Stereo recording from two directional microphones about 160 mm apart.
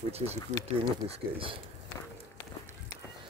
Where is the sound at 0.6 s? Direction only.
40° right (ahead or behind).